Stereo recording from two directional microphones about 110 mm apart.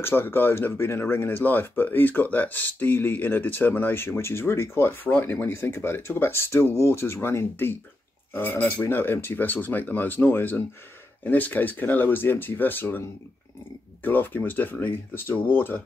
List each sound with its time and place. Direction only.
0.0 s speech: 20° left (ahead or behind)
14.0 s speech: 15° left (ahead or behind)